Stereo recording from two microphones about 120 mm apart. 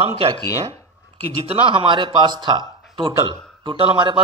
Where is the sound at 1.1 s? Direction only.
55° right (ahead or behind).